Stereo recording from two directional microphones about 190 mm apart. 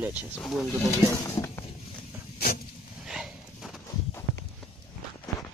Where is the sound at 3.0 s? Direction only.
Centre (ahead or behind).